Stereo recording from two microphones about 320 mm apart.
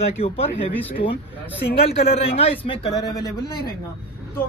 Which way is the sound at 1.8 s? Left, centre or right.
Centre.